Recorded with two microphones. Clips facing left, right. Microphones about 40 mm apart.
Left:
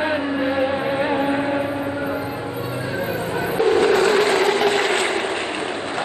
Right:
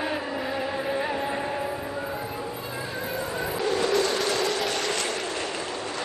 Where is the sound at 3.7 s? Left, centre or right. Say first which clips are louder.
Left 8 dB; left.